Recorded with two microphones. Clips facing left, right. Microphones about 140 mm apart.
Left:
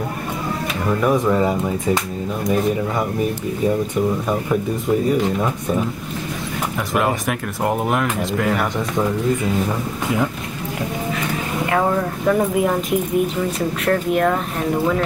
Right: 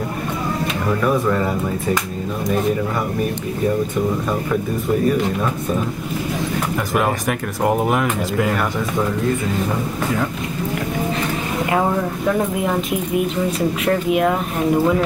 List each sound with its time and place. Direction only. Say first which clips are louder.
1.0 s speech: left 2 dB; 15° left (ahead or behind)
7.0 s speech: left 1 dB; centre (ahead or behind)
12.3 s speech: left 3 dB; centre (ahead or behind)